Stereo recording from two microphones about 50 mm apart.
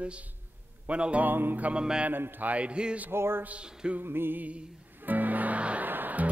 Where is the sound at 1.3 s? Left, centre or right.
Right.